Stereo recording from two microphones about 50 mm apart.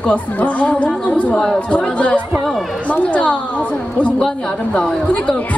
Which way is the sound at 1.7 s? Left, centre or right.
Left.